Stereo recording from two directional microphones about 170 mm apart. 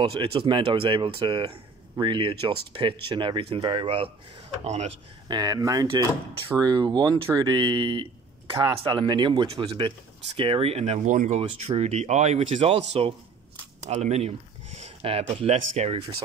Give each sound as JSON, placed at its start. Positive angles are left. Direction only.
{"t": 0.0, "sound": "speech", "side_deg": -35}
{"t": 5.3, "sound": "speech", "side_deg": -20}